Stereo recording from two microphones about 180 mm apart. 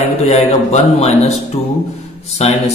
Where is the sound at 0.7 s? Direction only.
35° left (ahead or behind).